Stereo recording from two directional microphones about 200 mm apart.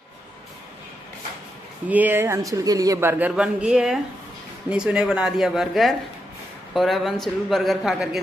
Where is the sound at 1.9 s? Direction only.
10° right (ahead or behind).